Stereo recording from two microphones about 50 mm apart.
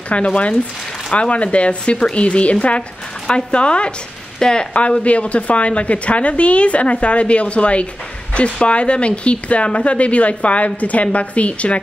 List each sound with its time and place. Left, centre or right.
0.1 s speech: left
4.7 s speech: left